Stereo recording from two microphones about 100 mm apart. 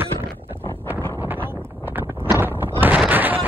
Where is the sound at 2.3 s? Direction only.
20° right (ahead or behind).